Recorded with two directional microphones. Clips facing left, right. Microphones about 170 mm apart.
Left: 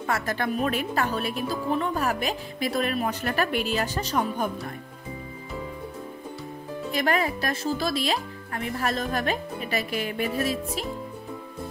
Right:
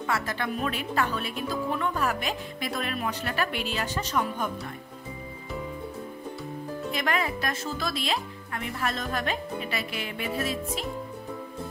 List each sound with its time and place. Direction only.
0.0 s speech: 45° left (ahead or behind)
6.9 s speech: 40° left (ahead or behind)